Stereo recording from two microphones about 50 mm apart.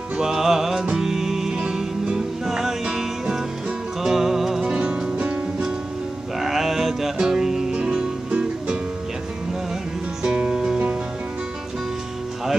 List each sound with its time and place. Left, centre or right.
0.2 s music: centre
4.6 s music: centre
6.4 s music: centre
10.2 s music: centre